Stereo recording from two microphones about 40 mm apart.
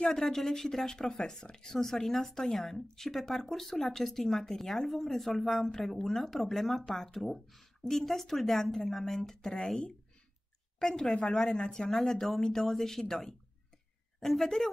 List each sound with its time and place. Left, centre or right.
0.1 s a woman's voice: centre
10.8 s speech: centre
11.9 s a woman's voice: centre